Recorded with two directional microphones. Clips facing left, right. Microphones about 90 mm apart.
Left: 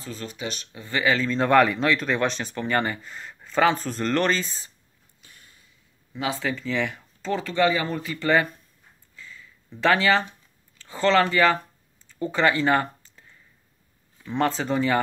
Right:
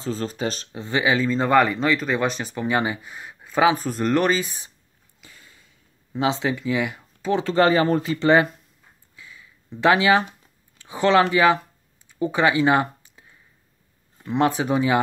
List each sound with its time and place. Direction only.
0.0 s speech: 35° right (ahead or behind)
0.8 s speech: 20° right (ahead or behind)
1.1 s speech: 5° right (ahead or behind)
5.2 s a sound: 90° right
6.1 s speech: 25° right (ahead or behind)
6.5 s speech: 10° right (ahead or behind)
7.4 s speech: 40° right (ahead or behind)
8.1 s speech: 20° right (ahead or behind)
9.1 s a sound: 15° right (ahead or behind)
10.8 s speech: 15° right (ahead or behind)
12.1 s a sound: 15° right (ahead or behind)
14.2 s speech: 15° right (ahead or behind)